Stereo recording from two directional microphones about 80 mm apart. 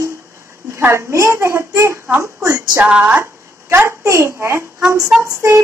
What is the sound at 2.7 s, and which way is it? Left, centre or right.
Speech, centre.